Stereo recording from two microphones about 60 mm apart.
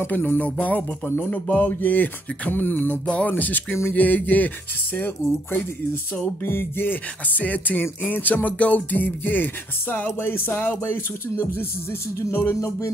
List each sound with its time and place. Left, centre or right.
0.0 s a sound: left
4.9 s music: left
12.5 s music: left